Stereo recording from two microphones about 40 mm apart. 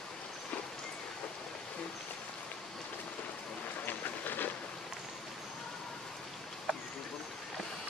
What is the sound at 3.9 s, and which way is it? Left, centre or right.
Train, left.